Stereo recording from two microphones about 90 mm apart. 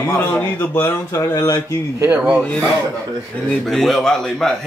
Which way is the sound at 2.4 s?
10° left (ahead or behind).